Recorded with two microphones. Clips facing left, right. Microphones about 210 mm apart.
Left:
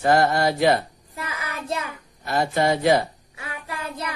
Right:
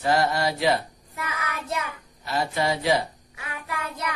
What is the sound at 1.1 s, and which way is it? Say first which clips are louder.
Child singing: even; 30° left (ahead or behind).